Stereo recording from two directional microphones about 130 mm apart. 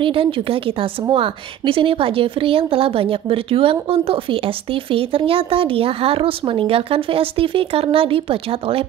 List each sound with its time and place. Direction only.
0.0 s speech: 45° right (ahead or behind)